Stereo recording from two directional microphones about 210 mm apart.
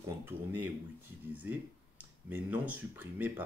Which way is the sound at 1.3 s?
10° right (ahead or behind).